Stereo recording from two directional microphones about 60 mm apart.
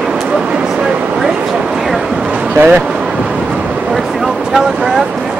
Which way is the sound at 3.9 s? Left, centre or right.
Centre.